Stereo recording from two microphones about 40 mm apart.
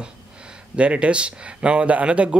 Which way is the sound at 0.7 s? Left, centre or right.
Right.